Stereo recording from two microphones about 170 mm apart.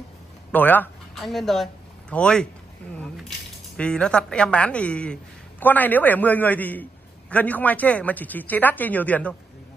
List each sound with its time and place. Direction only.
0.5 s speech: 10° left (ahead or behind)